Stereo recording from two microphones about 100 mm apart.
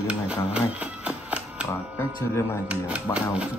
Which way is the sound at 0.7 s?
15° right (ahead or behind).